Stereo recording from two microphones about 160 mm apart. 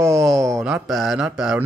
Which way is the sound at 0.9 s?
Centre (ahead or behind).